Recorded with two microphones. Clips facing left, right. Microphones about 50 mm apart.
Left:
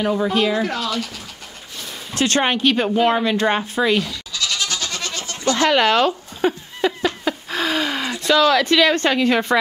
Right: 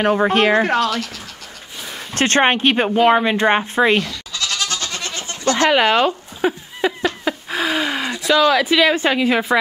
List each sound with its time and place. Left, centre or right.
0.0 s speech: right
2.1 s speech: right
4.3 s goat: right
4.9 s goat: right
5.7 s speech: centre
7.2 s a sound: centre
8.3 s speech: centre